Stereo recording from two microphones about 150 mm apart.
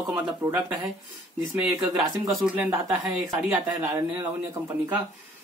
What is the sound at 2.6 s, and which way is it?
Speech, 15° right (ahead or behind).